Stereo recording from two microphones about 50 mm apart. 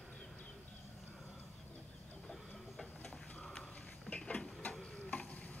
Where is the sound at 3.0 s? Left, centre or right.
Centre.